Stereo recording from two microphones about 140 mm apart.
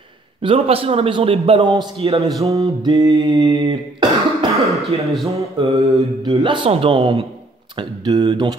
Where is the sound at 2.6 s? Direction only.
30° right (ahead or behind).